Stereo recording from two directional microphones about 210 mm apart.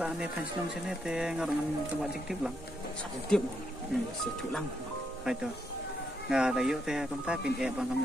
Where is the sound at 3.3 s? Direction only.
5° left (ahead or behind).